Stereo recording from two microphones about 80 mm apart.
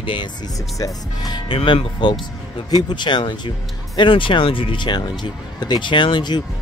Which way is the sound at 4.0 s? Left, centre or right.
Left.